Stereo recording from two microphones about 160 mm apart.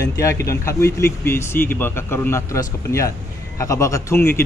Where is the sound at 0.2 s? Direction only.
20° left (ahead or behind).